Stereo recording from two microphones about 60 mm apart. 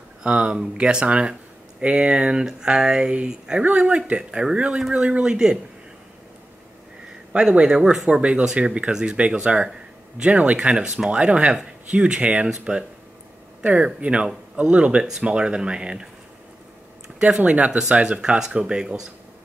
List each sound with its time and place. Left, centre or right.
0.2 s speech: centre
5.0 s speech: centre
7.3 s speech: centre
17.2 s speech: centre